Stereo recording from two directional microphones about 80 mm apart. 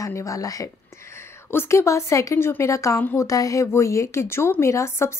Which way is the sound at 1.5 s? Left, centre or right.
Left.